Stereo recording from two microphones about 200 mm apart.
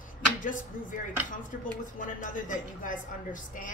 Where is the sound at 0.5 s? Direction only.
40° left (ahead or behind).